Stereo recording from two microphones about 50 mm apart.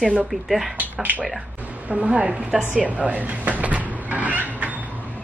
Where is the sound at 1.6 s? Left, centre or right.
Right.